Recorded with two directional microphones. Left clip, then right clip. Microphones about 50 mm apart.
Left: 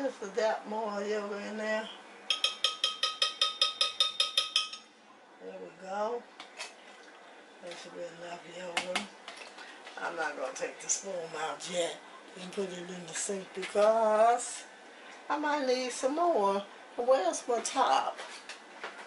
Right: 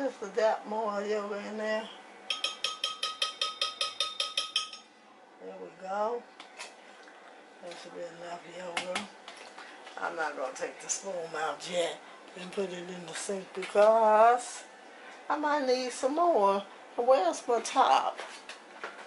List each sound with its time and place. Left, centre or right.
0.0 s speech: right
1.8 s a sound: right
5.9 s speech: right
8.2 s speech: right
11.1 s speech: right